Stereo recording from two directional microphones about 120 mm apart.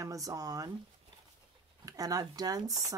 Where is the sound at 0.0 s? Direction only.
30° right (ahead or behind).